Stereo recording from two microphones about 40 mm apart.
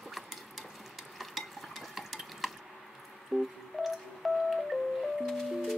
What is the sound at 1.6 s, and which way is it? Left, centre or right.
Dishes, centre.